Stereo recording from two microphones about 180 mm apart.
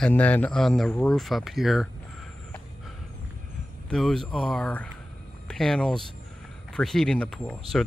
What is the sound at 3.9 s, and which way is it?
Speech, centre (ahead or behind).